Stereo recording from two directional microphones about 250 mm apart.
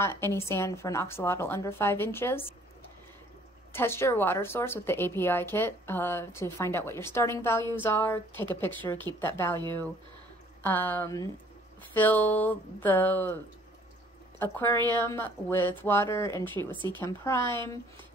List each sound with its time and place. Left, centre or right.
0.0 s a woman's voice: centre
3.7 s a woman's voice: centre
10.6 s a woman's voice: centre
14.4 s a woman's voice: centre
16.7 s speech: centre
17.0 s a woman's voice: centre